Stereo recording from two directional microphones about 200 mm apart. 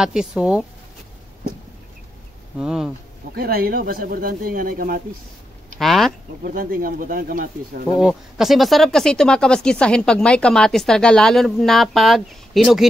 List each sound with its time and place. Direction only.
0.0 s speech: centre (ahead or behind)
2.6 s speech: 5° right (ahead or behind)
3.3 s speech: 50° right (ahead or behind)
5.8 s speech: centre (ahead or behind)
6.4 s speech: 45° right (ahead or behind)
8.0 s speech: centre (ahead or behind)